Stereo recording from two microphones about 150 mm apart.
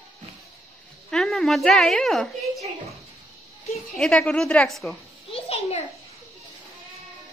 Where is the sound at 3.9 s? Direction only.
5° left (ahead or behind).